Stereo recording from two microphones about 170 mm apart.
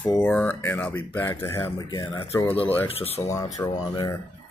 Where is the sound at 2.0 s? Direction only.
30° left (ahead or behind).